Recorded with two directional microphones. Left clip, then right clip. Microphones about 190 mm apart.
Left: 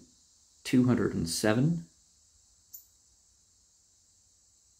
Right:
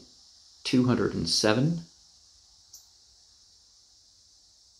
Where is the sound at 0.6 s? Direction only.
25° left (ahead or behind).